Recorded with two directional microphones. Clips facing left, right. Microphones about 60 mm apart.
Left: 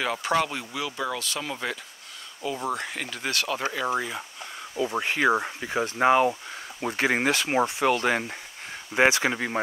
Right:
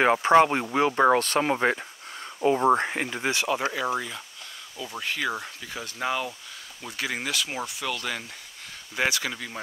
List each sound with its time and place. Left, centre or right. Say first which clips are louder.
0.0 s speech: right 7 dB; right; by 3.8 s centre
3.8 s speech: left 1 dB; centre
4.7 s speech: left 6 dB; left